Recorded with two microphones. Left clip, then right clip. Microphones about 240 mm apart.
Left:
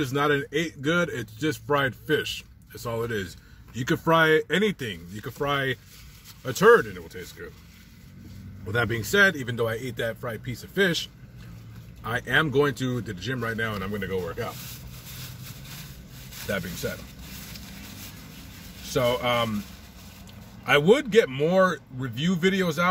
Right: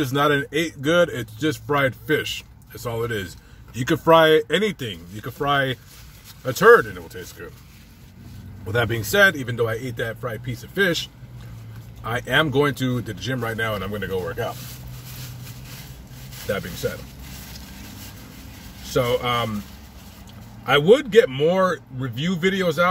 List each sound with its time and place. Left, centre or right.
0.0 s a man's voice: centre
8.6 s a man's voice: centre
16.4 s speech: left
18.9 s speech: centre
20.8 s a man's voice: centre